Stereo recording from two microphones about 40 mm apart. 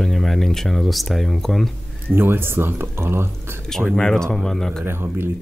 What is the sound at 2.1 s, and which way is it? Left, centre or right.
Speech, right.